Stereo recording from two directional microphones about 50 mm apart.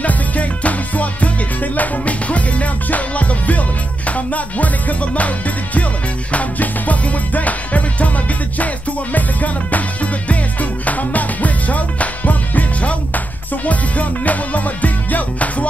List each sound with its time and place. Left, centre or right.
0.0 s music: left
6.3 s music: left